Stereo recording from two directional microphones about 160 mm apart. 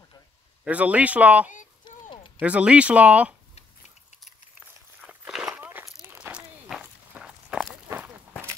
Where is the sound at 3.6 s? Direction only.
45° left (ahead or behind).